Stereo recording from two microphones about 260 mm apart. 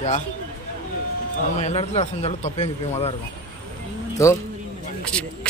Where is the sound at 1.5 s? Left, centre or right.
Left.